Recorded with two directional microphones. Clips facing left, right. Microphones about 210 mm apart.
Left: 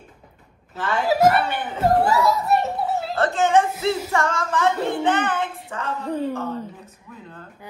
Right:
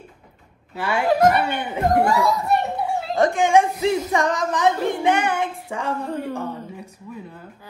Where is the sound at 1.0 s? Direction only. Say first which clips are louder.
Right 1 dB; 5° left (ahead or behind).